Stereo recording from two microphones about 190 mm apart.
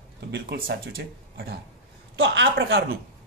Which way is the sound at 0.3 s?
55° right (ahead or behind).